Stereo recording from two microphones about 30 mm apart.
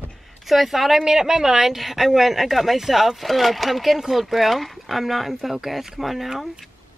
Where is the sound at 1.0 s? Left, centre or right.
Centre.